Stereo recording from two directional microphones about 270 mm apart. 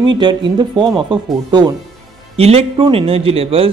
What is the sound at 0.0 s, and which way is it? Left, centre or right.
A man's voice, centre.